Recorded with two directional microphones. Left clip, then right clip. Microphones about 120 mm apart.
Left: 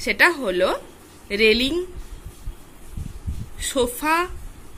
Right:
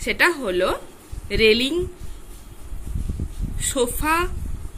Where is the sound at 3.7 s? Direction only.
10° left (ahead or behind).